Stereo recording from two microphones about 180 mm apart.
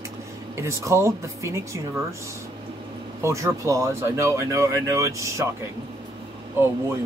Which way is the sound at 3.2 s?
15° right (ahead or behind).